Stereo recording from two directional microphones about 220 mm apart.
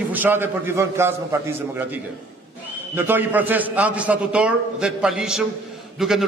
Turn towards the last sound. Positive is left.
turn(degrees=0)  # may be behind; listen again after turning